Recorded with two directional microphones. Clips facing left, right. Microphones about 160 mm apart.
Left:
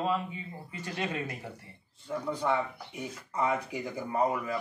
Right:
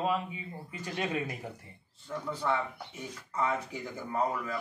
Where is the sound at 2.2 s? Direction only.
15° left (ahead or behind).